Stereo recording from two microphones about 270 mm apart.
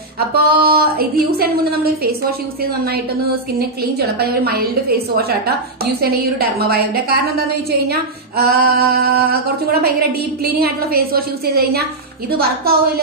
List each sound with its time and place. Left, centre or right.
0.3 s a woman's voice: right
3.5 s a woman's voice: right